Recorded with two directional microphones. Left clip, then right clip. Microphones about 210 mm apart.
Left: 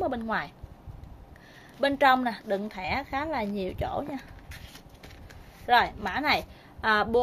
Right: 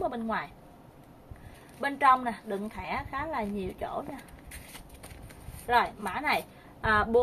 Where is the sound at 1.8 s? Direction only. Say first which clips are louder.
Left 2 dB; 55° left (ahead or behind).